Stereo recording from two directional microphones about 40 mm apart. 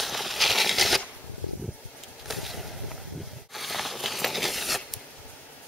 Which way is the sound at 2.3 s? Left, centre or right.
Centre.